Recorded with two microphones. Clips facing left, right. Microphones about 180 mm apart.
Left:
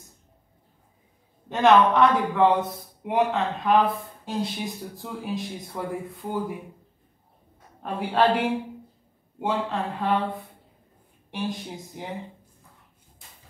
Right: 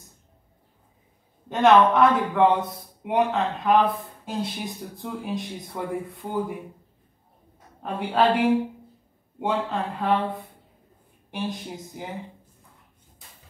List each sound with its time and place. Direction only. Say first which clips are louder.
1.5 s speech: right 1 dB; centre (ahead or behind)
7.8 s speech: even; centre (ahead or behind)